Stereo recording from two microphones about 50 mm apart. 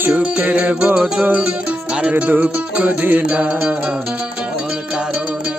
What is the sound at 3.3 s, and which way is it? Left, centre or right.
Music, right.